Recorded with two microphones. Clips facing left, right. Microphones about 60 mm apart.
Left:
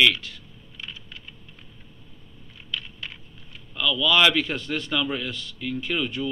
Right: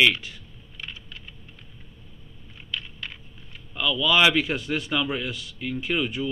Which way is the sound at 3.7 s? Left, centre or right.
Centre.